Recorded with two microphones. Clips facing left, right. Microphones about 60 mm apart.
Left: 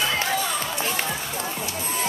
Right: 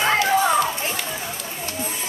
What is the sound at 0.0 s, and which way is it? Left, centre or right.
Music, right.